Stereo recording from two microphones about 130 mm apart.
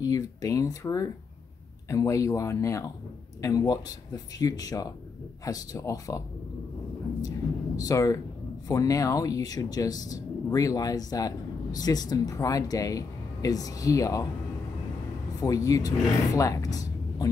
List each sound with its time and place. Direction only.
0.0 s speech: 25° left (ahead or behind)
7.2 s a sound: 30° left (ahead or behind)
8.6 s speech: 25° left (ahead or behind)
15.4 s speech: 25° left (ahead or behind)